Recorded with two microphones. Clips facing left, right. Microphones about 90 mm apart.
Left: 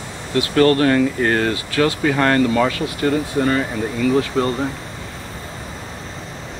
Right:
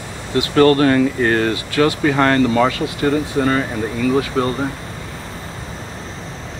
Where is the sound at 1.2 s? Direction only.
45° left (ahead or behind).